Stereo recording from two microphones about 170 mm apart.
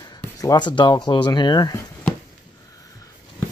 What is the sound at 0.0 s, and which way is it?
Speech, 20° left (ahead or behind).